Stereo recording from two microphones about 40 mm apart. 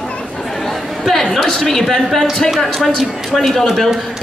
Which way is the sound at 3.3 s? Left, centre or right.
Centre.